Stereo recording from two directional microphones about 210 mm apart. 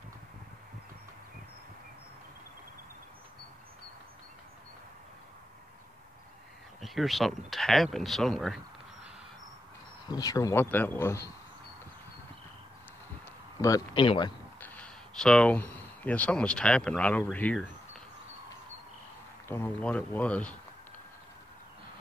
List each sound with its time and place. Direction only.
6.8 s speech: centre (ahead or behind)
10.0 s a man's voice: 20° left (ahead or behind)
13.6 s speech: 15° left (ahead or behind)
14.6 s speech: 5° left (ahead or behind)
19.4 s a man's voice: 10° left (ahead or behind)